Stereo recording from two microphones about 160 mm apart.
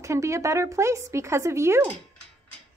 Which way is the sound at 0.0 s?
20° right (ahead or behind).